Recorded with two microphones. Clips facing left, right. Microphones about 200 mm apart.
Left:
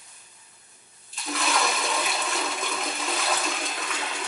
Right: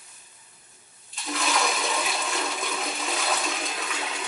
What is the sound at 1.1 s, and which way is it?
Toilet flush, centre (ahead or behind).